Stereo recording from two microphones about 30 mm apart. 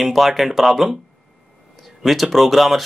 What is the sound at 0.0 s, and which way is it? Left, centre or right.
Speech, centre.